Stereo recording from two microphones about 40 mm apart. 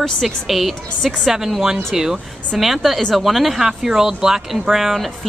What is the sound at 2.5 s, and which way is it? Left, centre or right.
A woman's voice, centre.